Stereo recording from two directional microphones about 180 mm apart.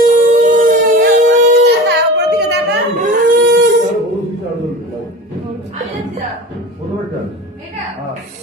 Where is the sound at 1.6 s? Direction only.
70° right (ahead or behind).